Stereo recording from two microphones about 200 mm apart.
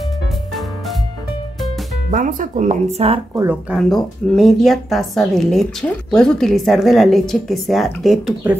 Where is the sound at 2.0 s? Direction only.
40° right (ahead or behind).